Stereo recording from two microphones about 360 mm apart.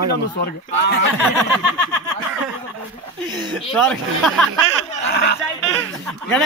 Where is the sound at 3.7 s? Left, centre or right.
Centre.